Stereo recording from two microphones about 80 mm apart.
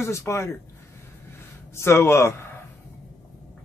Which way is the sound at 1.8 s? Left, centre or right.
Left.